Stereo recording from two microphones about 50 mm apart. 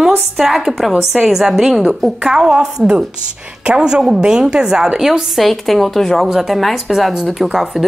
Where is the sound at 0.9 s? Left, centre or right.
Centre.